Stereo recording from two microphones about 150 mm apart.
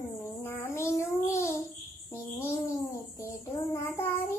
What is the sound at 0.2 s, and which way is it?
Child singing, 15° left (ahead or behind).